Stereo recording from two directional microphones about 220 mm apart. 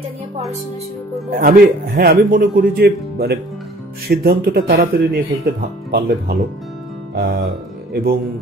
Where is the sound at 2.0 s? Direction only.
40° right (ahead or behind).